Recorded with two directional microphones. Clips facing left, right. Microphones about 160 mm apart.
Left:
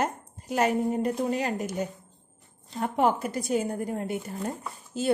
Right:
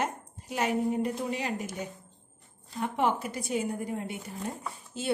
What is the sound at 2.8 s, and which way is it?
Speech, 40° left (ahead or behind).